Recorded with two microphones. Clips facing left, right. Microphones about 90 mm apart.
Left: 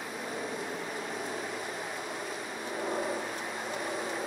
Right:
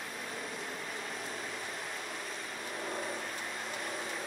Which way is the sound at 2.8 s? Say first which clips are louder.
Left 6 dB; 15° left (ahead or behind).